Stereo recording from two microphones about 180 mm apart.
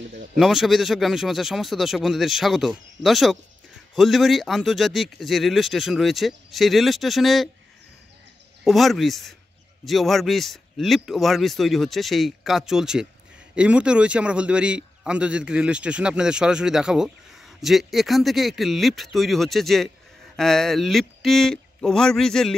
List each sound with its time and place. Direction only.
0.1 s speech: 45° right (ahead or behind)
0.4 s a man's voice: centre (ahead or behind)
8.6 s a man's voice: centre (ahead or behind)